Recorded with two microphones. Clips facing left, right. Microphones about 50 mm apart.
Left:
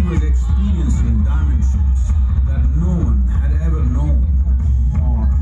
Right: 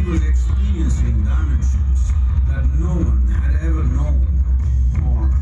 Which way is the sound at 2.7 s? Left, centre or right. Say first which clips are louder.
Left 3 dB; right.